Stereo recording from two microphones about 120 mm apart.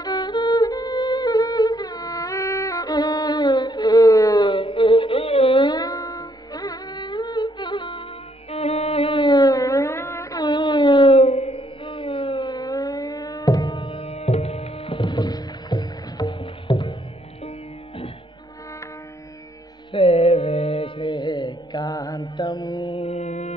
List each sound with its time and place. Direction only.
0.0 s music: 35° left (ahead or behind)
8.5 s music: 55° left (ahead or behind); by 10.4 s 20° left (ahead or behind)
10.4 s a sound: 40° left (ahead or behind)
12.4 s music: 30° left (ahead or behind)
13.8 s music: 50° left (ahead or behind)
19.9 s music: 50° left (ahead or behind); by 22.9 s 35° left (ahead or behind)
22.9 s music: 65° left (ahead or behind)